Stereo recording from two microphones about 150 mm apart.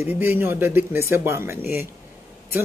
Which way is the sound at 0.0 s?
15° right (ahead or behind).